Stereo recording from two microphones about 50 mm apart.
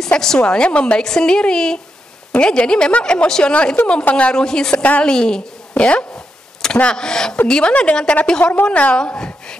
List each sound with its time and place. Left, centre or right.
0.0 s a woman's voice: centre
1.0 s a woman's voice: centre